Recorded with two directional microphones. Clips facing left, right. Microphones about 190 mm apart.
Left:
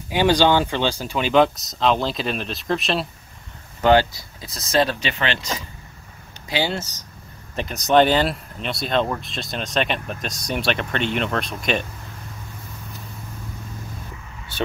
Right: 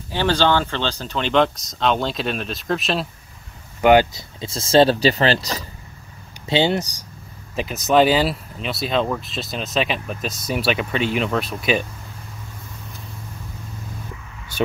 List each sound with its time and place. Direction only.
0.1 s speech: 15° left (ahead or behind)
3.8 s speech: 15° right (ahead or behind); by 5.7 s 35° right (ahead or behind)
6.4 s speech: 25° right (ahead or behind)
7.5 s speech: 5° right (ahead or behind)